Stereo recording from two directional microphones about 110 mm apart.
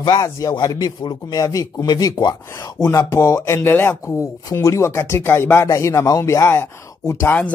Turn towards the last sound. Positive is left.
turn(degrees=25)  # may be behind; listen again after turning